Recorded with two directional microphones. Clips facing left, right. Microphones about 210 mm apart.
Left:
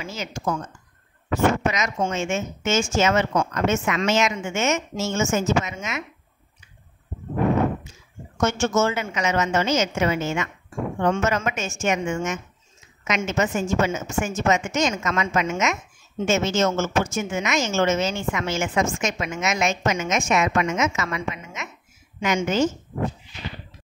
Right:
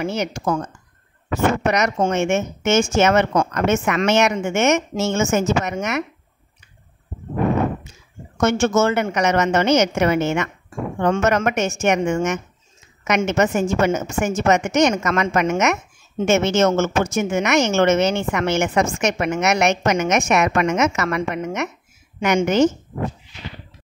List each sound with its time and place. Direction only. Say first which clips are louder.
0.0 s speech: right 6 dB; 65° right (ahead or behind)
1.7 s speech: right 6 dB; 65° right (ahead or behind)
8.4 s a woman's voice: right 4 dB; 65° right (ahead or behind)